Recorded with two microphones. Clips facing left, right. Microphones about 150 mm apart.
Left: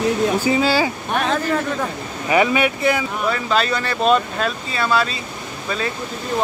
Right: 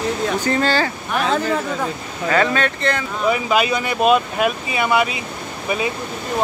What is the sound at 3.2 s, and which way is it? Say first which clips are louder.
Speech: right 4 dB; 10° right (ahead or behind).